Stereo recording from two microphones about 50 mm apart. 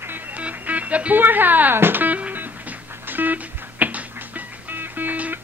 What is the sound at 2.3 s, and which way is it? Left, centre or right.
Music, right.